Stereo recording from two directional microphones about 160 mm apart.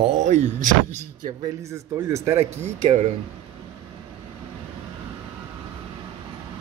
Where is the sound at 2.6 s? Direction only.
45° right (ahead or behind).